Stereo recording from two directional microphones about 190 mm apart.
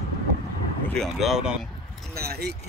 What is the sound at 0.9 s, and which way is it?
Speech, centre (ahead or behind).